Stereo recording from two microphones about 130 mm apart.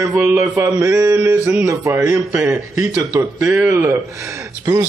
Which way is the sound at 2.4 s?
20° right (ahead or behind).